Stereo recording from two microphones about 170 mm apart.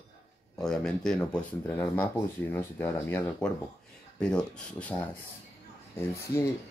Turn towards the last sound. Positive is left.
turn(degrees=15)  # may be behind; listen again after turning